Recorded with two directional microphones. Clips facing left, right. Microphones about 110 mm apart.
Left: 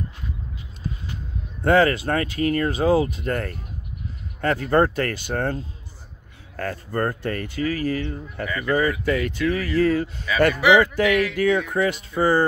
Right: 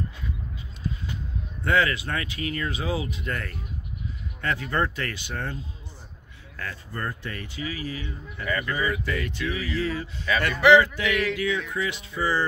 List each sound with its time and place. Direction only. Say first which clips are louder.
1.6 s speech: left 6 dB; 40° left (ahead or behind)
10.3 s speech: left 4 dB; 10° left (ahead or behind)
10.7 s speech: right 1 dB; 50° left (ahead or behind)